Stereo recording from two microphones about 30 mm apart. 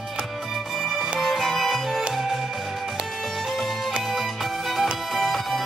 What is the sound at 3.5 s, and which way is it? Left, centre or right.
Music, centre.